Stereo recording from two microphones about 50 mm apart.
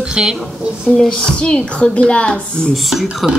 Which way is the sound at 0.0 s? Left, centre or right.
Centre.